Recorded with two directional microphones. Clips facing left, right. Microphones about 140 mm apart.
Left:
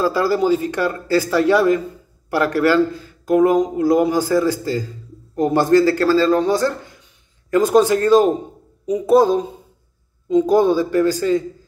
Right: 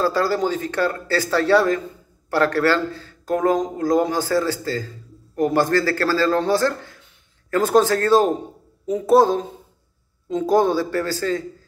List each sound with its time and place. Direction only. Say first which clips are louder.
0.0 s a man's voice: left 3 dB; 10° left (ahead or behind)
10.5 s speech: even; 15° left (ahead or behind)